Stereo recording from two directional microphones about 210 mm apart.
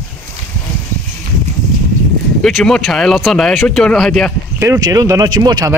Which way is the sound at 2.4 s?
5° left (ahead or behind).